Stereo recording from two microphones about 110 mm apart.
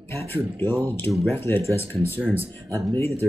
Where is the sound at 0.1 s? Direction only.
20° left (ahead or behind).